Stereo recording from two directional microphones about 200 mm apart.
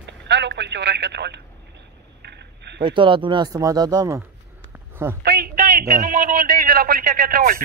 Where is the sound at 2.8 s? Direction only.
25° right (ahead or behind).